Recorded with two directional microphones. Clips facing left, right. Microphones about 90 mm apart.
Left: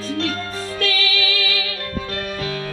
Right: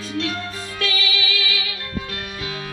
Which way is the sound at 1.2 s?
20° right (ahead or behind).